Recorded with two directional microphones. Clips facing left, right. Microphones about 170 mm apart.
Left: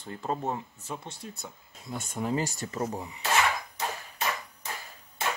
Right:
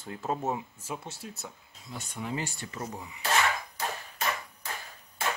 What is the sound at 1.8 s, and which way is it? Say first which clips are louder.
Speech: left 5 dB; 50° left (ahead or behind).